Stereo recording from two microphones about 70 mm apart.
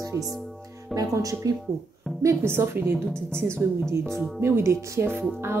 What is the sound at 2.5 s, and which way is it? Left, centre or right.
A woman's voice, right.